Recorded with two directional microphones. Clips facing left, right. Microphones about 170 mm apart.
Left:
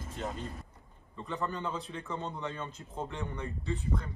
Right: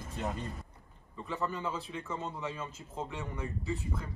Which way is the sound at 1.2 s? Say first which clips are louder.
Even; 5° right (ahead or behind).